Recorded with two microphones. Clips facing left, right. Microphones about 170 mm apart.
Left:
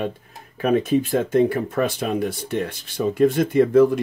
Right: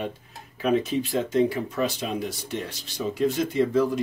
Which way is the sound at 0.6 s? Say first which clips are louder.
Left 5 dB; 55° left (ahead or behind).